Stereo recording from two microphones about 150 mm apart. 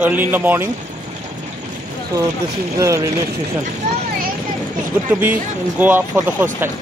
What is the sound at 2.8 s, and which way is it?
Speech, 20° right (ahead or behind).